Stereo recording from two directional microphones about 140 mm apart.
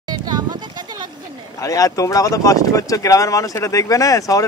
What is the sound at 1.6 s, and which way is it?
Speech, 25° left (ahead or behind).